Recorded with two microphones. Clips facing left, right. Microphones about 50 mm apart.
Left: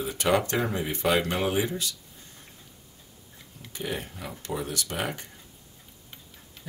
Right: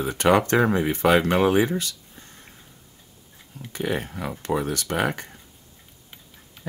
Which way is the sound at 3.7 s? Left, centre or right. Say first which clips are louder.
Right 6 dB; right.